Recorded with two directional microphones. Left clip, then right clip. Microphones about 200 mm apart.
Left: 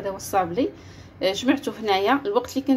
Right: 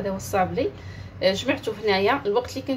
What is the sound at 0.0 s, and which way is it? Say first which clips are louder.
A woman's voice: even; 40° left (ahead or behind).